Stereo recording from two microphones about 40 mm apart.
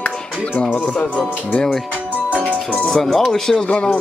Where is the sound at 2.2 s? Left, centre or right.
Right.